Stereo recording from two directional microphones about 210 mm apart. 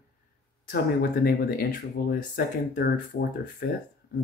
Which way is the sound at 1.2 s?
45° left (ahead or behind).